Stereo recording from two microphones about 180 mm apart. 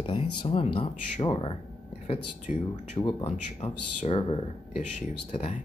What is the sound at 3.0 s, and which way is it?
Speech, 35° left (ahead or behind).